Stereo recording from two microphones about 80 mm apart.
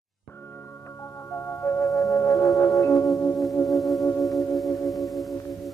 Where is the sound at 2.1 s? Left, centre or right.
Left.